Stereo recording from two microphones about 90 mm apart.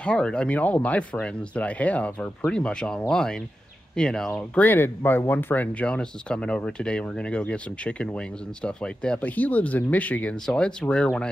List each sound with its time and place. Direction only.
0.0 s speech: 10° left (ahead or behind)
4.6 s speech: 25° left (ahead or behind)